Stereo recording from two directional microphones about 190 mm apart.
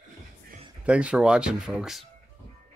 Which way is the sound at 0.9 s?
5° right (ahead or behind).